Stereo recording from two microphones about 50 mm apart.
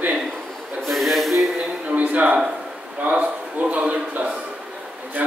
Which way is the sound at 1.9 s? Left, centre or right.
Right.